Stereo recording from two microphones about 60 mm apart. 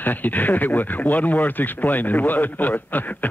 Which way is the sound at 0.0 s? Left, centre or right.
Left.